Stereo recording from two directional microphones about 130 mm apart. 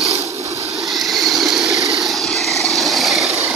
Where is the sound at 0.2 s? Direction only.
25° right (ahead or behind).